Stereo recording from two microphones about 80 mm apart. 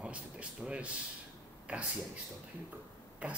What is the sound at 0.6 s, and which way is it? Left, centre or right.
Speech, centre.